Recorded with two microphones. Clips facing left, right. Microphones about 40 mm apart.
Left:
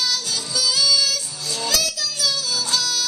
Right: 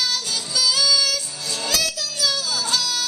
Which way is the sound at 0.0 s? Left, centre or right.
Right.